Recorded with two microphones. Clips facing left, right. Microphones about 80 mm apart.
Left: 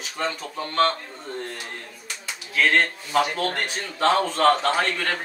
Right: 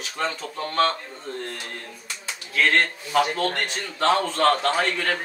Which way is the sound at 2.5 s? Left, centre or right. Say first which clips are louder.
Left 1 dB; centre.